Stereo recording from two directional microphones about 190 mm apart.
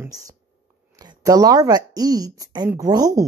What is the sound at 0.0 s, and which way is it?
A woman's voice, 20° right (ahead or behind).